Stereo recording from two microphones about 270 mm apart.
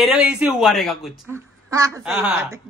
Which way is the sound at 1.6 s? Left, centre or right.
Centre.